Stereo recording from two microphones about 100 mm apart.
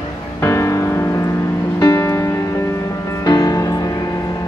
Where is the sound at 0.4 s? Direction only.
30° left (ahead or behind).